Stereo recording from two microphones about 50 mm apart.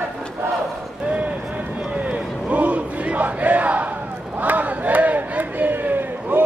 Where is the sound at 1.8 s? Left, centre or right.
Right.